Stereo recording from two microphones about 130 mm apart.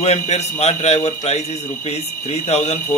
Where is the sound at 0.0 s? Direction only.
55° left (ahead or behind).